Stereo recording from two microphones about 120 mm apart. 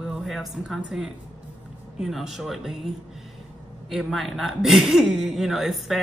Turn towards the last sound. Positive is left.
turn(degrees=0)  # may be behind; listen again after turning